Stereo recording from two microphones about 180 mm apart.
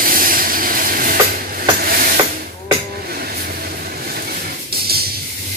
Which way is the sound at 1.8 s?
55° right (ahead or behind).